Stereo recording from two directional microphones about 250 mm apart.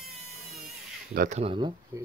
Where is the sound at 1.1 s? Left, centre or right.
Right.